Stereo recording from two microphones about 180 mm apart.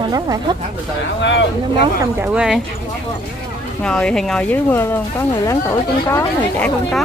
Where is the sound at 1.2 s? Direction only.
80° left.